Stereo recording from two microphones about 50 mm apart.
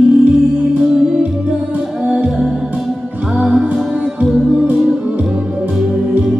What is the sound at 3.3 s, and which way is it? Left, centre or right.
Music, centre.